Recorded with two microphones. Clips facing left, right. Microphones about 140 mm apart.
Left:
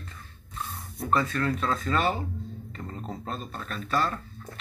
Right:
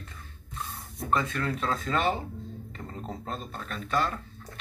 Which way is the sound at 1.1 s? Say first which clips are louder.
Left 2 dB; 20° right (ahead or behind).